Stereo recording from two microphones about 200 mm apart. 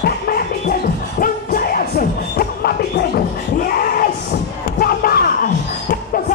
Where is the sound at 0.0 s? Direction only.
50° left (ahead or behind).